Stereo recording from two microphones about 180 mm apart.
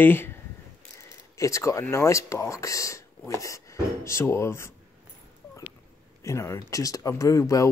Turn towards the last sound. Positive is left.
turn(degrees=15)  # may be behind; listen again after turning